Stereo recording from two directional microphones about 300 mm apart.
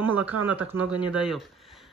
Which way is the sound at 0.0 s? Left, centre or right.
Centre.